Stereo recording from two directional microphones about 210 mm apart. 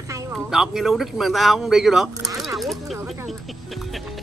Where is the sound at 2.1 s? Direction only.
15° right (ahead or behind).